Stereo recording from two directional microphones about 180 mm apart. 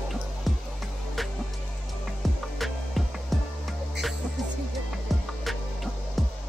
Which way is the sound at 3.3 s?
Centre (ahead or behind).